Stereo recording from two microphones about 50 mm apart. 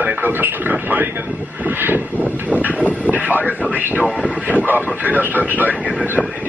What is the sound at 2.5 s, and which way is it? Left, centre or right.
Speech, right.